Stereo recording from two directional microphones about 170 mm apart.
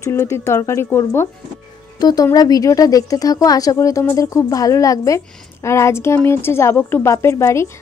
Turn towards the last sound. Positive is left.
turn(degrees=15)  # may be behind; listen again after turning